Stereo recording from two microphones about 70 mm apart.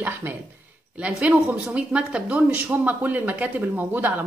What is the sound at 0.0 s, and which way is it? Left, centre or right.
A woman's voice, right.